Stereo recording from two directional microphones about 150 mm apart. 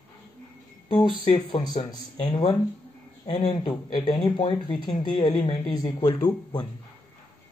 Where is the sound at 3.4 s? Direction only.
30° left (ahead or behind).